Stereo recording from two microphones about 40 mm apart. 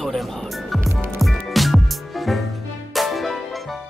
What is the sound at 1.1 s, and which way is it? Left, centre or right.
Music, centre.